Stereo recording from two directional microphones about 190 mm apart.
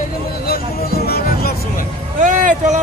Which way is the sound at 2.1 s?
40° right (ahead or behind).